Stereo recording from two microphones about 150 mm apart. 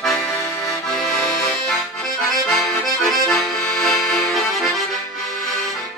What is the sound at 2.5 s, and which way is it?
Accordion, centre (ahead or behind).